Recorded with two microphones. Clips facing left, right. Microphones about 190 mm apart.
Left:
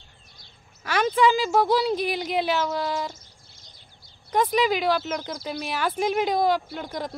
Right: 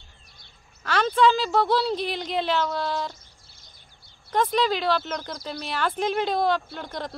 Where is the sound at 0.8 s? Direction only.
10° left (ahead or behind).